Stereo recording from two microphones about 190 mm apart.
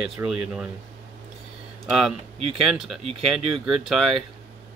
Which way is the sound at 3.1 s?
30° right (ahead or behind).